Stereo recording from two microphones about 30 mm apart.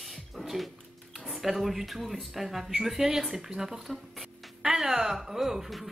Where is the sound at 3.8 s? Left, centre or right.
Centre.